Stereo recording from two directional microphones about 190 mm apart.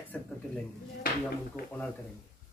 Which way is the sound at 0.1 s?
Centre (ahead or behind).